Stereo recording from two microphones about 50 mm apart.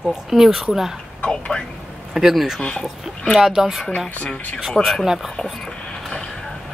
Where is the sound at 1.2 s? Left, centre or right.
Centre.